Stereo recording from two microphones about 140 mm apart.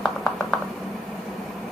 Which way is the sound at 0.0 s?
5° left (ahead or behind).